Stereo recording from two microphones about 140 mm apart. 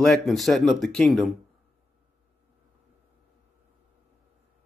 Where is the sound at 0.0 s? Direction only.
Centre (ahead or behind).